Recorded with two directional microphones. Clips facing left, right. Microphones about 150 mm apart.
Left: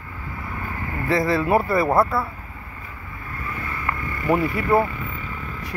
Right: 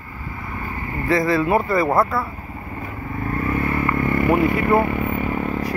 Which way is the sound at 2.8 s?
50° right (ahead or behind).